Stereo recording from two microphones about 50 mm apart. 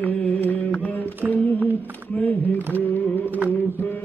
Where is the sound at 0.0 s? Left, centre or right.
Left.